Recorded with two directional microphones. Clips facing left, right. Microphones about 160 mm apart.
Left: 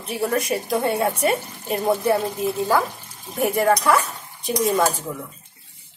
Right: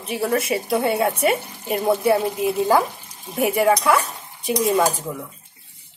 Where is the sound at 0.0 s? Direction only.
5° right (ahead or behind).